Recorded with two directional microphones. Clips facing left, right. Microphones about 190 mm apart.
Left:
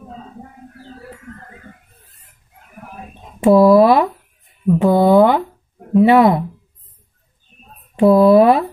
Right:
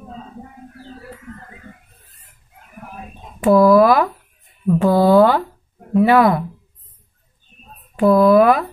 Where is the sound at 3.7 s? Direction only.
25° left (ahead or behind).